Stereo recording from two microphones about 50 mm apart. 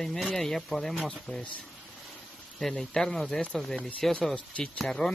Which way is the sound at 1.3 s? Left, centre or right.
Centre.